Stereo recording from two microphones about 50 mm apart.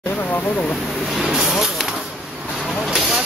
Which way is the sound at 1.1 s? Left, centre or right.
Centre.